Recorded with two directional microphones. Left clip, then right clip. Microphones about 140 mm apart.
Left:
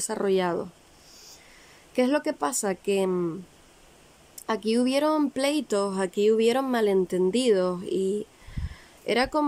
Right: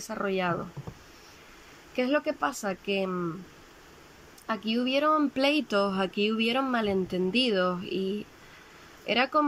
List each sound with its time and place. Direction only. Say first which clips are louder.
0.0 s speech: left 4 dB; 35° left (ahead or behind)
2.0 s speech: left 3 dB; 30° left (ahead or behind)
4.5 s speech: left 4 dB; 35° left (ahead or behind)